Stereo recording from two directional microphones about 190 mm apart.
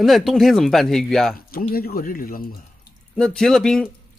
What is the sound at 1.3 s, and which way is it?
Speech, 50° left (ahead or behind).